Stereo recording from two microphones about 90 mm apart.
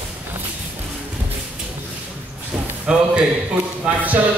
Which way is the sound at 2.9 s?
10° right (ahead or behind).